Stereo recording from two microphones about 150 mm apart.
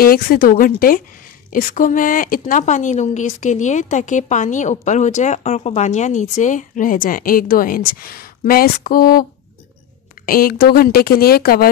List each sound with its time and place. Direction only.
0.0 s speech: 80° left
1.5 s speech: 65° left (ahead or behind)
10.2 s speech: 75° left (ahead or behind)